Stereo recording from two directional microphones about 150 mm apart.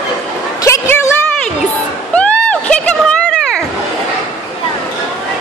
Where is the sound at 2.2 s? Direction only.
10° left (ahead or behind).